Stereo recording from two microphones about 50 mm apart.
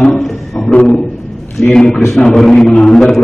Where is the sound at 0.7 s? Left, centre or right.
Left.